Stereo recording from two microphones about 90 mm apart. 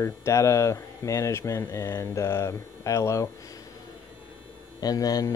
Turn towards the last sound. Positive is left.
turn(degrees=40)  # may be behind; listen again after turning